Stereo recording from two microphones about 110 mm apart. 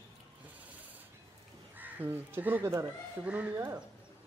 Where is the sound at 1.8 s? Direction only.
15° right (ahead or behind).